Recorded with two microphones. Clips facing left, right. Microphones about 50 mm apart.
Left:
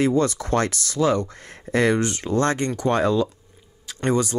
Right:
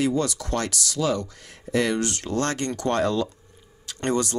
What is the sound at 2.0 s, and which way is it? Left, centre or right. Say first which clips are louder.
Speech: left 4 dB; left.